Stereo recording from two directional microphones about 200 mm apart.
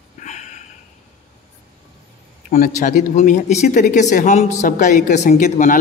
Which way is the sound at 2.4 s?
45° left (ahead or behind).